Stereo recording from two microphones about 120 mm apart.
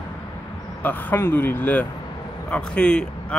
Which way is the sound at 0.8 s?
15° left (ahead or behind).